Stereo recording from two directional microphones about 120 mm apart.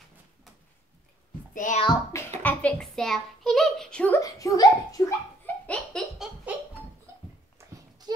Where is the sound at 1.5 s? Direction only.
90° left.